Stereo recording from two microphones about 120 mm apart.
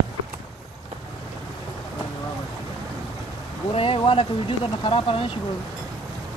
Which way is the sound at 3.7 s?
50° left (ahead or behind).